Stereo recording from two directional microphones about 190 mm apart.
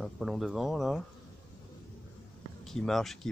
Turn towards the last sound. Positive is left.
turn(degrees=0)  # may be behind; listen again after turning